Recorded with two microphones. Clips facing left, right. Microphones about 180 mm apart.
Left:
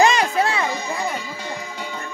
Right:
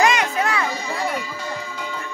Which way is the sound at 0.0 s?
30° left (ahead or behind).